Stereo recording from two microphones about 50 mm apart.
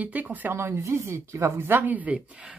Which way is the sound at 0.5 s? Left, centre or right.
Right.